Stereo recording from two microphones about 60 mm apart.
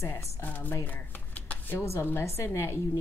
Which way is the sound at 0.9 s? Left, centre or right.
Left.